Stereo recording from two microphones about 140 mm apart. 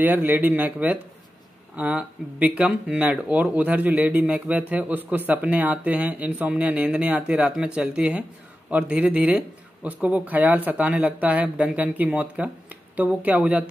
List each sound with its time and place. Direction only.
0.0 s speech: 15° right (ahead or behind)